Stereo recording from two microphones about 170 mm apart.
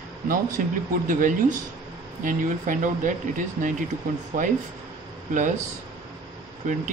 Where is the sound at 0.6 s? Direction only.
50° right (ahead or behind).